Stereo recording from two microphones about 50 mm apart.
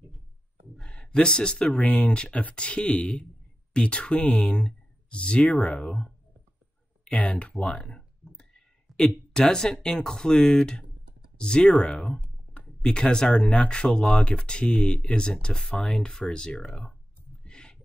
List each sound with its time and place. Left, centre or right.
0.8 s speech: centre
2.0 s speech: centre
7.1 s speech: left
8.3 s clicking: centre
8.9 s a sound: centre
9.3 s speech: centre
12.8 s speech: centre
14.8 s speech: centre
15.0 s speech: centre
17.5 s a sound: centre